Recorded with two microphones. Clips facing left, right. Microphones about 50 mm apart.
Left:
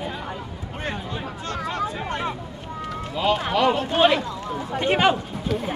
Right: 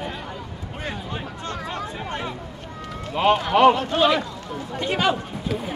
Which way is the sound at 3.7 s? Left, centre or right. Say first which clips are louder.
Left 1 dB; left.